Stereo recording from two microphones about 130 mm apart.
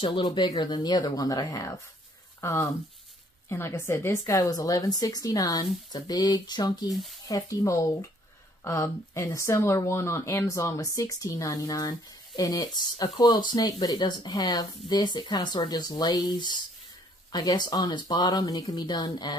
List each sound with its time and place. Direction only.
0.0 s speech: 40° left (ahead or behind)
6.9 s speech: centre (ahead or behind)
7.2 s speech: 25° left (ahead or behind)